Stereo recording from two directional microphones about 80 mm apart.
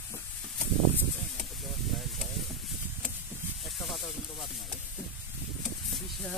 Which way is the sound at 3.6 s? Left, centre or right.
Centre.